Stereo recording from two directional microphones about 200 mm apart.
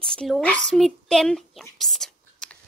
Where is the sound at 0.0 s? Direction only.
5° left (ahead or behind).